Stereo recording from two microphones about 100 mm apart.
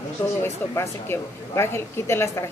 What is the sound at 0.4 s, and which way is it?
Speech, 25° left (ahead or behind).